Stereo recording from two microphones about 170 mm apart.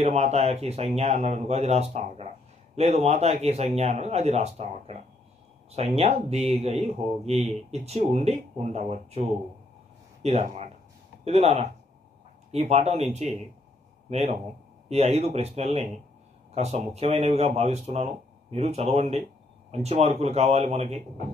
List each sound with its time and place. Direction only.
0.0 s speech: 40° right (ahead or behind)